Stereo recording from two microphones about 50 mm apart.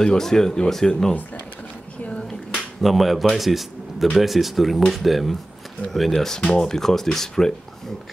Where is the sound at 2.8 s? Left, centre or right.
Centre.